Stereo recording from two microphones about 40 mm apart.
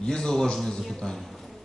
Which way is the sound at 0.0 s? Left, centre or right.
Centre.